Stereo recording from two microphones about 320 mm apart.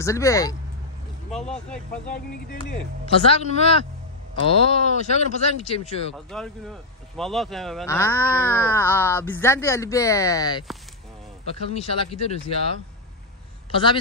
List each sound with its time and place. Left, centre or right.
0.0 s a man's voice: centre
3.1 s speech: centre
6.1 s a man's voice: centre
13.7 s speech: centre